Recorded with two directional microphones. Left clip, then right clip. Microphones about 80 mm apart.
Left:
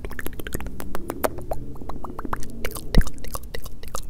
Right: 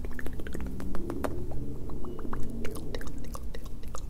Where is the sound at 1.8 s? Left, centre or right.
Left.